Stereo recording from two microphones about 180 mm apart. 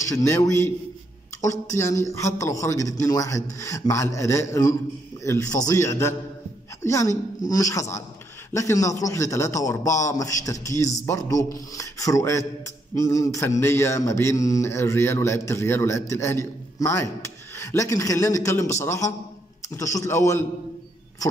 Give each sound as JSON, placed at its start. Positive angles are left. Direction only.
{"t": 0.0, "sound": "mantra", "side_deg": 15}